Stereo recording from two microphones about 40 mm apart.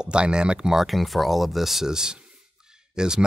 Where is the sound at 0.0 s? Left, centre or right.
Right.